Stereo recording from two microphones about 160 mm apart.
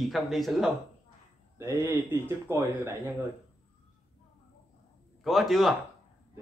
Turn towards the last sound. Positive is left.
turn(degrees=0)  # may be behind; listen again after turning